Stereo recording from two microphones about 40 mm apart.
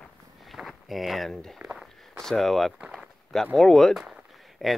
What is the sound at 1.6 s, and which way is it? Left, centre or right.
Walk, centre.